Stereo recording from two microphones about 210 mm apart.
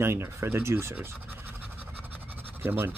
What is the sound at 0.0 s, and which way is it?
Speech, 10° right (ahead or behind).